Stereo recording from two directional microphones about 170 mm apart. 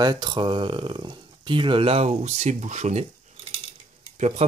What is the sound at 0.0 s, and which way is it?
Speech, 25° right (ahead or behind).